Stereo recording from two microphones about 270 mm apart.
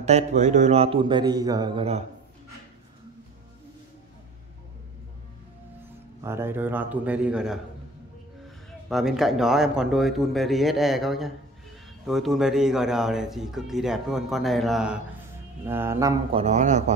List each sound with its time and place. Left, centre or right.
0.0 s speech: right
6.2 s a man's voice: centre
8.8 s a man's voice: centre
16.4 s speech: right